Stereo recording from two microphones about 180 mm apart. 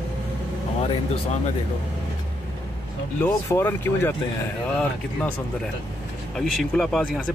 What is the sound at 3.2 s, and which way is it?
Speech, 10° left (ahead or behind).